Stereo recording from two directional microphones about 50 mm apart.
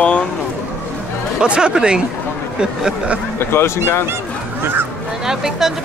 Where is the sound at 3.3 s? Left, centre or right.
Left.